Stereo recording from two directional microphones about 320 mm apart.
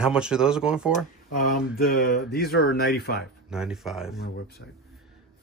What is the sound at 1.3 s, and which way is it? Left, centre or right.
Speech, left.